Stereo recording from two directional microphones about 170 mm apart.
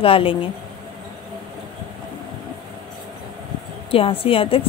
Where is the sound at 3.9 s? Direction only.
35° left (ahead or behind).